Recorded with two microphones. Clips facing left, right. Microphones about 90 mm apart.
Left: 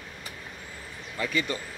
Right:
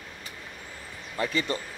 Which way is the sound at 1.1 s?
35° right (ahead or behind).